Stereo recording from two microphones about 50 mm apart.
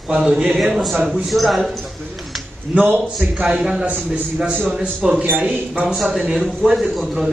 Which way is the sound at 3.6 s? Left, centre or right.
Centre.